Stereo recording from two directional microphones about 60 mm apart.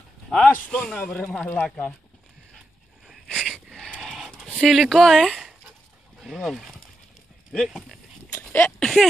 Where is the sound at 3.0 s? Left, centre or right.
Centre.